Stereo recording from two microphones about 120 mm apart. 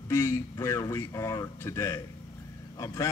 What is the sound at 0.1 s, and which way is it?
A man's voice, 20° left (ahead or behind).